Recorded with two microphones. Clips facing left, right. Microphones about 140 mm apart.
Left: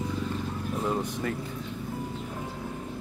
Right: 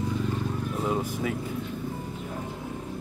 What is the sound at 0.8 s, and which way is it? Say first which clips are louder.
Speech: right 1 dB; 5° right (ahead or behind).